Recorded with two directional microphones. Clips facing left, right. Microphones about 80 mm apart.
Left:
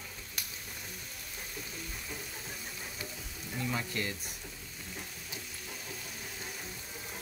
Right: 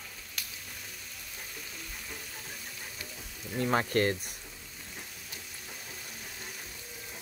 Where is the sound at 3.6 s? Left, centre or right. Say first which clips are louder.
Right 9 dB; right.